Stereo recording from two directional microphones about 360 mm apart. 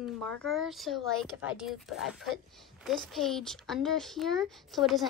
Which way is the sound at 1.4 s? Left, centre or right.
Centre.